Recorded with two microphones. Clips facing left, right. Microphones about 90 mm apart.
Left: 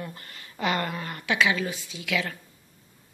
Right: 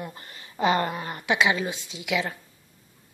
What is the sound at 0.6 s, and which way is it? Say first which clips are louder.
A woman's voice: right 4 dB; 25° right (ahead or behind).